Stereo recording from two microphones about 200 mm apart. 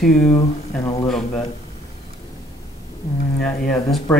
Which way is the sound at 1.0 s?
5° left (ahead or behind).